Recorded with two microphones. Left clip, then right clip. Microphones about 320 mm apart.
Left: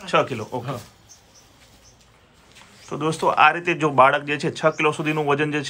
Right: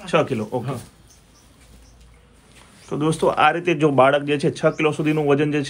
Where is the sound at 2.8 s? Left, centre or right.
Centre.